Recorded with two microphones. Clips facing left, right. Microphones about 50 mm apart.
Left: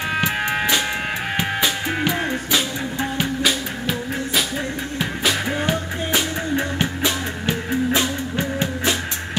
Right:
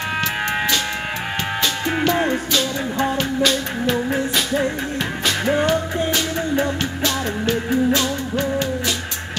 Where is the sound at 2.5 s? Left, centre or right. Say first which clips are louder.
Right 1 dB; centre.